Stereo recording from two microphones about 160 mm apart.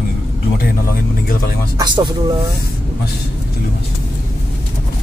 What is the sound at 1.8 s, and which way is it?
Speech, 25° right (ahead or behind).